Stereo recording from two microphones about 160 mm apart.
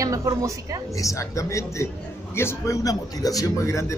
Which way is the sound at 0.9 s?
20° left (ahead or behind).